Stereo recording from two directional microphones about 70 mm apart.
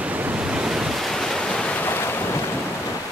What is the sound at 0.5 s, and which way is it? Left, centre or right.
Waves, centre.